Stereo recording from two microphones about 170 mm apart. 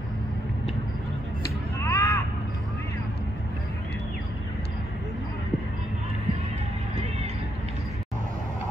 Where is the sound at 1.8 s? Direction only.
15° left (ahead or behind).